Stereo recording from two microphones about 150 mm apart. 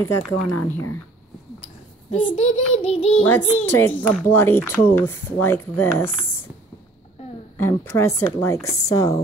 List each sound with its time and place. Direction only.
0.0 s speech: 15° left (ahead or behind)
2.0 s a child's voice: 45° left (ahead or behind)
3.6 s speech: 10° left (ahead or behind)
7.2 s a sound: 40° left (ahead or behind)
7.5 s speech: 15° left (ahead or behind)